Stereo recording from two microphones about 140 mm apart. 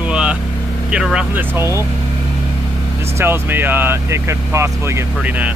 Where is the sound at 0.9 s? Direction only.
5° right (ahead or behind).